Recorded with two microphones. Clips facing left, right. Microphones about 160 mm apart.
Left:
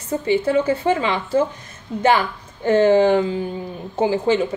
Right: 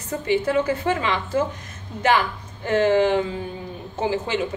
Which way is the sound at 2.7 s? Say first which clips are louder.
Left 4 dB; 25° left (ahead or behind).